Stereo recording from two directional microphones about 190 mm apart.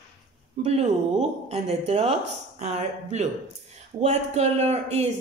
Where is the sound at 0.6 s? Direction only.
35° right (ahead or behind).